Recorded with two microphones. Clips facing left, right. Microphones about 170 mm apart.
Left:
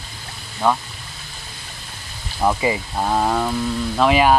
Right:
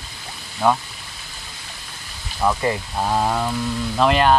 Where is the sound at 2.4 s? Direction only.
15° left (ahead or behind).